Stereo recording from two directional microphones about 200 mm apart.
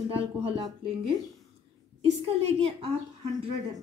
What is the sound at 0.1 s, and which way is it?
A woman's voice, 25° right (ahead or behind).